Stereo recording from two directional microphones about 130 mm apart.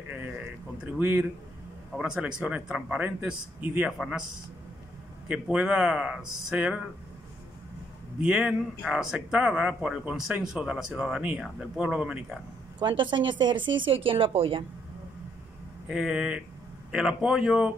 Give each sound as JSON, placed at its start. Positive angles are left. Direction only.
{"t": 0.7, "sound": "a man's voice", "side_deg": -15}
{"t": 5.3, "sound": "a man's voice", "side_deg": -10}
{"t": 8.2, "sound": "speech", "side_deg": -5}
{"t": 12.7, "sound": "speech", "side_deg": -35}
{"t": 15.9, "sound": "speech", "side_deg": -5}